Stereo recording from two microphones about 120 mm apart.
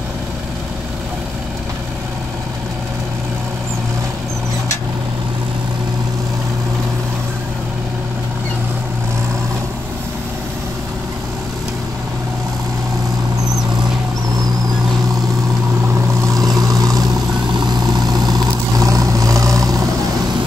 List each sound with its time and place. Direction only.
16.2 s vehicle: 30° right (ahead or behind)